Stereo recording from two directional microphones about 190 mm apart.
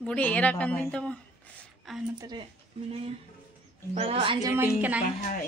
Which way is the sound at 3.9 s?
30° right (ahead or behind).